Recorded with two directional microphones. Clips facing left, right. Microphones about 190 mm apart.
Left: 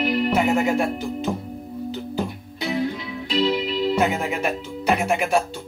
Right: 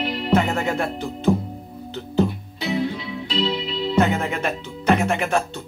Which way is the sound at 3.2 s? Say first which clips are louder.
Left 3 dB; 50° left (ahead or behind).